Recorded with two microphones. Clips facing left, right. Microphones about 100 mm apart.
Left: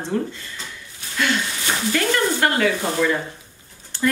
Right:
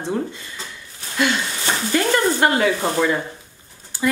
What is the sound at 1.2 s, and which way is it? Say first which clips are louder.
Speech: right 2 dB; 20° right (ahead or behind).